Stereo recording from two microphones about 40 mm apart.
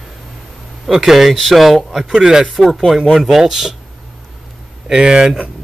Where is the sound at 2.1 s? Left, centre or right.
Centre.